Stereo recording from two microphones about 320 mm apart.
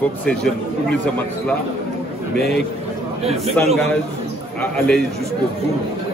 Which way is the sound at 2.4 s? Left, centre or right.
Centre.